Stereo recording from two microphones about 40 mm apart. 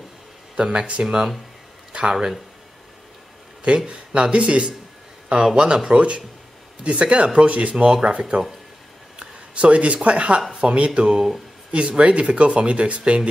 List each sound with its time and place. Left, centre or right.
0.7 s speech: right
1.0 s speech: centre
1.9 s a sound: right
3.6 s speech: right
5.3 s speech: centre
5.9 s speech: right
7.7 s speech: centre
8.1 s speech: right
9.2 s a sound: right
10.0 s speech: right